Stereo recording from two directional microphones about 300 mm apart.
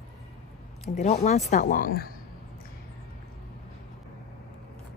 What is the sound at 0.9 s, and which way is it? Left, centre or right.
Speech, left.